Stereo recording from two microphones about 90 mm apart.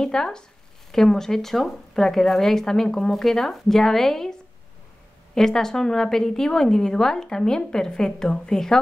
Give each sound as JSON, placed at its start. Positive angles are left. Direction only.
{"t": 0.0, "sound": "a woman's voice", "side_deg": 10}